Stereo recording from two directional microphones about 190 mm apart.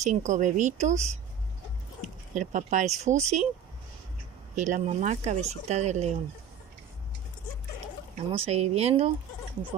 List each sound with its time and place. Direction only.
0.0 s speech: 40° right (ahead or behind)
2.3 s speech: 40° right (ahead or behind)
4.6 s speech: 40° right (ahead or behind)
8.3 s speech: 35° right (ahead or behind)